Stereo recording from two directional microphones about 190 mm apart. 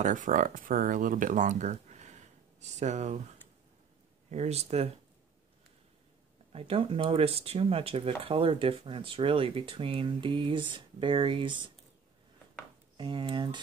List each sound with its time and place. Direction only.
0.0 s speech: 45° right (ahead or behind)
4.3 s speech: 35° right (ahead or behind)
6.5 s speech: 30° right (ahead or behind)
12.9 s speech: 25° right (ahead or behind)